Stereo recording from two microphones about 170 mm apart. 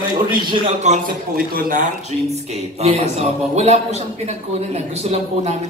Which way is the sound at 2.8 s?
40° right (ahead or behind).